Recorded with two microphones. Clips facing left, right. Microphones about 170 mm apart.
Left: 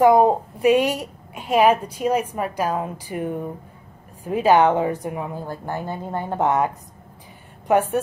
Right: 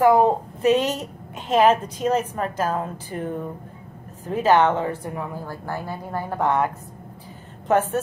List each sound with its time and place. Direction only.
0.0 s a woman's voice: 15° left (ahead or behind)